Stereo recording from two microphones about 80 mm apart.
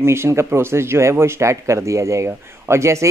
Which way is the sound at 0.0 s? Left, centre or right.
Right.